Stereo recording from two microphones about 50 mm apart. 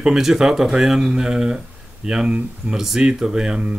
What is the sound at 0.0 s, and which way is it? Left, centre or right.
Speech, centre.